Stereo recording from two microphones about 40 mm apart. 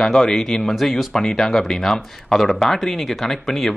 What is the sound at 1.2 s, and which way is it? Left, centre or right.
Speech, centre.